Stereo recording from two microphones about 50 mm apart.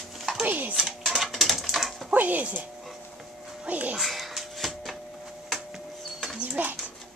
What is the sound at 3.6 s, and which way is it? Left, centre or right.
Speech, right.